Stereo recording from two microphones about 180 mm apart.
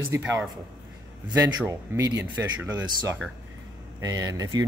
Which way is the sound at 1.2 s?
20° right (ahead or behind).